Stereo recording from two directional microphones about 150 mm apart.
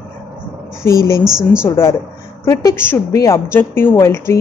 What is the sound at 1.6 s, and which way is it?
Speech, 15° left (ahead or behind).